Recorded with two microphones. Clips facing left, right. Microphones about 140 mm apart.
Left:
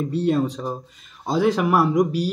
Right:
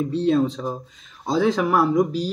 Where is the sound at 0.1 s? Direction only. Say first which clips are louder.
Right 1 dB; 10° left (ahead or behind).